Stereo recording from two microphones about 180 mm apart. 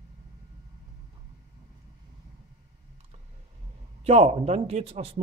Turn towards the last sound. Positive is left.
turn(degrees=-35)  # may be behind; listen again after turning